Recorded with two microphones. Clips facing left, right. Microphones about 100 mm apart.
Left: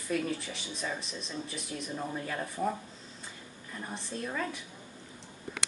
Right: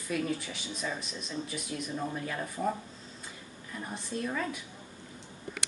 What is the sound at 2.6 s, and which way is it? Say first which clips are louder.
Speech: even; 10° right (ahead or behind).